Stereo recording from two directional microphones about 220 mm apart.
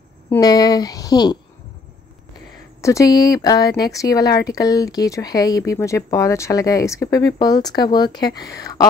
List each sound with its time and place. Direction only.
0.3 s speech: 15° left (ahead or behind)
2.8 s speech: 15° left (ahead or behind)